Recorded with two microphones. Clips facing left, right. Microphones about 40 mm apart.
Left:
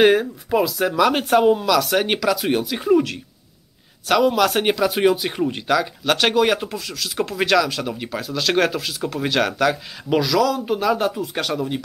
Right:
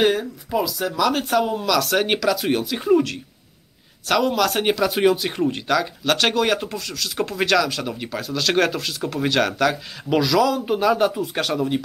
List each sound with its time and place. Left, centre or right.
0.0 s speech: left
1.6 s speech: centre